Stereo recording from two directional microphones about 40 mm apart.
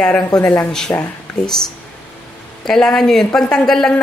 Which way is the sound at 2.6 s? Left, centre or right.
Centre.